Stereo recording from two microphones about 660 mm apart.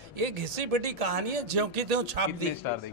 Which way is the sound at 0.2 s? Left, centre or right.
Right.